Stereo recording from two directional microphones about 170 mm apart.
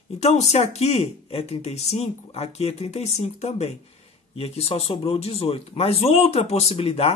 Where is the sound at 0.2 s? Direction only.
40° left (ahead or behind).